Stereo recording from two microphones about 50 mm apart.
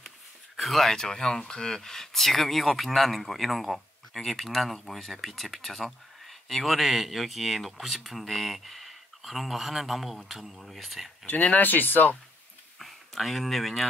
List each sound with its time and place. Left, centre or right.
0.6 s speech: centre
11.5 s speech: left
12.7 s speech: centre